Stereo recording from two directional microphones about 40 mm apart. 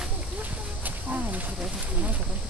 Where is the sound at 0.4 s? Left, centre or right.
Right.